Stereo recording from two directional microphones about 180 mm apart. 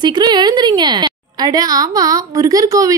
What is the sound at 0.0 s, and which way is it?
A woman's voice, 25° right (ahead or behind).